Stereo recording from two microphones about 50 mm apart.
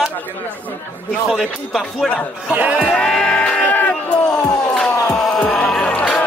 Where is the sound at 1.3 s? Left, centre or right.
Centre.